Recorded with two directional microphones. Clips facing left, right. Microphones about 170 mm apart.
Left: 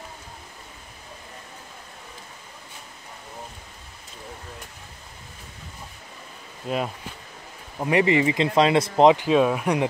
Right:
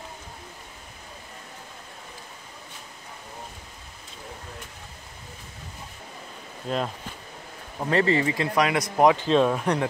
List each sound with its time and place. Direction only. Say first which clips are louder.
6.7 s speech: left 1 dB; 5° left (ahead or behind)